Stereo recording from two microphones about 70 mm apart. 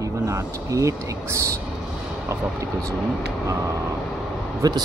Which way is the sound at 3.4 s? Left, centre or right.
Right.